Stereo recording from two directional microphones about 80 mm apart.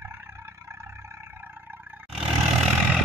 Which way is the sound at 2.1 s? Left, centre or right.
Centre.